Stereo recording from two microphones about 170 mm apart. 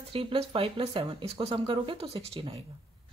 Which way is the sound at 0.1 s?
30° right (ahead or behind).